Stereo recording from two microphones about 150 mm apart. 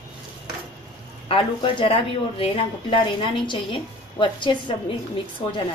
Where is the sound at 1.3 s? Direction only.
35° left (ahead or behind).